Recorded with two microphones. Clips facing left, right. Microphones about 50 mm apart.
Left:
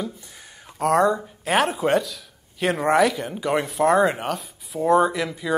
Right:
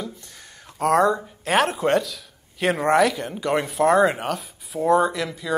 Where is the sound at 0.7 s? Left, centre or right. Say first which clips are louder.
Even; centre.